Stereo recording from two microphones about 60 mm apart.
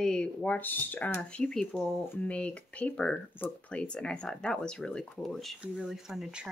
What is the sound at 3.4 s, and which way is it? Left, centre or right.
Speech, left.